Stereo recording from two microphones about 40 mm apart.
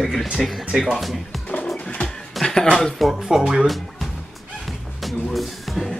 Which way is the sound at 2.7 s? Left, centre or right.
Centre.